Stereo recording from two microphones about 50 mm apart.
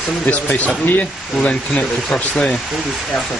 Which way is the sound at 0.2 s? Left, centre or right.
Left.